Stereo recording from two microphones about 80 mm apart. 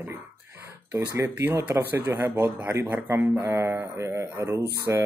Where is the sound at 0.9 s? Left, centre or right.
Right.